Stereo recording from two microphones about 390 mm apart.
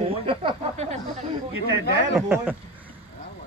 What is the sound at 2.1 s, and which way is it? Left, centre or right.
Speech, centre.